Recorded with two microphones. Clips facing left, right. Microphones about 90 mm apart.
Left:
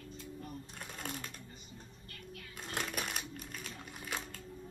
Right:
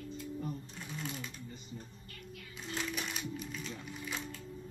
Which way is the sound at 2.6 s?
50° left (ahead or behind).